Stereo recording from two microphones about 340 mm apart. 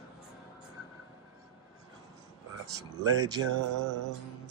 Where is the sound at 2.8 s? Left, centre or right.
Centre.